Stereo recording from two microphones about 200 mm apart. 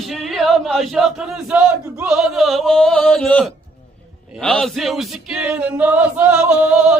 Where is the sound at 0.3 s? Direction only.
Centre (ahead or behind).